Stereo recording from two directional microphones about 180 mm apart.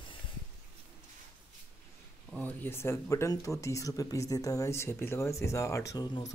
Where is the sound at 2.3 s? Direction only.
10° left (ahead or behind).